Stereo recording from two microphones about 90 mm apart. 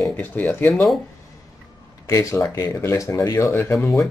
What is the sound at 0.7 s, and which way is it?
Speech, centre (ahead or behind).